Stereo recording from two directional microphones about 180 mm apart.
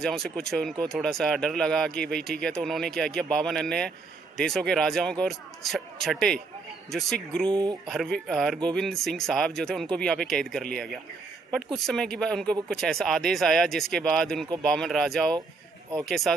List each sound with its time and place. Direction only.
0.0 s speech: 5° left (ahead or behind)
7.5 s speech: 25° right (ahead or behind)
7.9 s speech: centre (ahead or behind)